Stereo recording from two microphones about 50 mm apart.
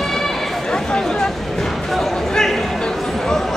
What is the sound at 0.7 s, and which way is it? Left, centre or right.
Chatter, centre.